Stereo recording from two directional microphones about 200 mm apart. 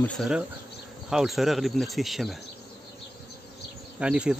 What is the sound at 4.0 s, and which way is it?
Speech, 5° right (ahead or behind).